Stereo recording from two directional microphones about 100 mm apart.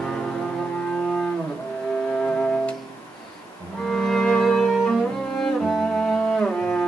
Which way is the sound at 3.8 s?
5° left (ahead or behind).